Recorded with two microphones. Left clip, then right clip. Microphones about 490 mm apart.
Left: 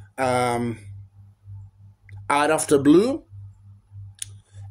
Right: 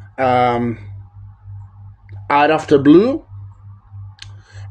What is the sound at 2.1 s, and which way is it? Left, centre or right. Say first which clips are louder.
Speech: right 7 dB; left.